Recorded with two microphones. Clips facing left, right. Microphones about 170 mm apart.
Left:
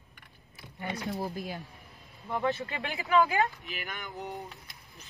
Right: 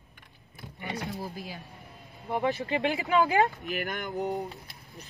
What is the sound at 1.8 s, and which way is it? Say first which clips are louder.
Vehicle: right 5 dB; 65° right (ahead or behind).